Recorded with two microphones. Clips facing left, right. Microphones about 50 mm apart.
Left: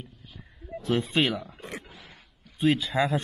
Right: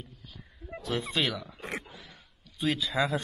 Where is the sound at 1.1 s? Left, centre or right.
Left.